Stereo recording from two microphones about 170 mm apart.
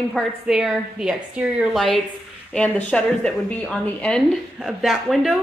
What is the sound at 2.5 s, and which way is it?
A woman's voice, 5° left (ahead or behind).